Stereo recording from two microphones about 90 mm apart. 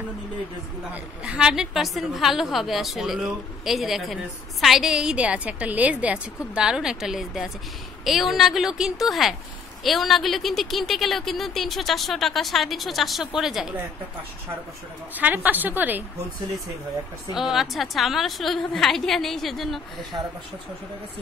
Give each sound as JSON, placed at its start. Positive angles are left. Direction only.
{"t": 1.2, "sound": "a woman's voice", "side_deg": -10}
{"t": 15.1, "sound": "a woman's voice", "side_deg": -20}
{"t": 17.4, "sound": "a woman's voice", "side_deg": -5}